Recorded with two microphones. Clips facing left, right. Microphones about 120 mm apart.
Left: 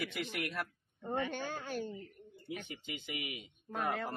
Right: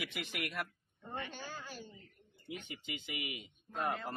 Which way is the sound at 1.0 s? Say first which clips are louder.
Left 8 dB; 60° left (ahead or behind).